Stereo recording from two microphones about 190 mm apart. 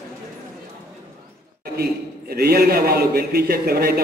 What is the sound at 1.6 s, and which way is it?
A man's voice, 55° right (ahead or behind).